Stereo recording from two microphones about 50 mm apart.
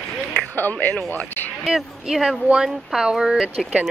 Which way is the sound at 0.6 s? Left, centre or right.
Left.